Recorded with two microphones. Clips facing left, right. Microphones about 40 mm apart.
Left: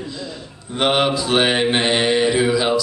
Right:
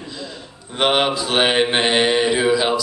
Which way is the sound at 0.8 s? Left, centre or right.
Centre.